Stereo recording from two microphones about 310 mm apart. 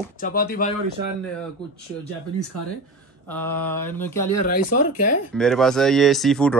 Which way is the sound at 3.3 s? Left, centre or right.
Centre.